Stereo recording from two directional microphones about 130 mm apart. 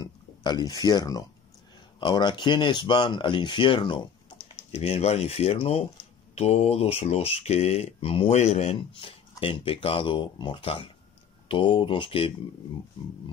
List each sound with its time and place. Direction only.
0.0 s speech: 35° left (ahead or behind)
4.7 s speech: 50° left (ahead or behind)
8.9 s speech: 45° left (ahead or behind)